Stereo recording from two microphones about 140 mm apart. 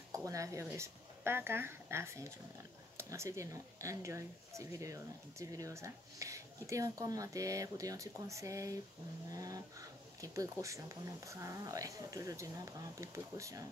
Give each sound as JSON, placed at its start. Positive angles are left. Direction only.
{"t": 0.1, "sound": "speech", "side_deg": -25}